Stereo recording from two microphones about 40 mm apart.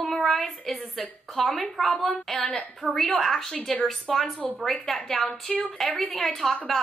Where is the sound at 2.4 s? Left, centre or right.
Centre.